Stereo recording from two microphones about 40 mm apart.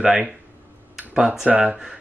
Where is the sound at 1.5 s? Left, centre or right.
Centre.